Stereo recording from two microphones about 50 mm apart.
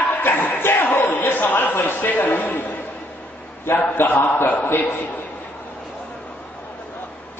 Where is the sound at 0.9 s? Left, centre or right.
Left.